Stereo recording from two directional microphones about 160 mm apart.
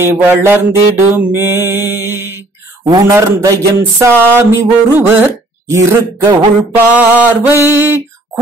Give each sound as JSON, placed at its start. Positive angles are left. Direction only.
{"t": 0.0, "sound": "speech", "side_deg": -15}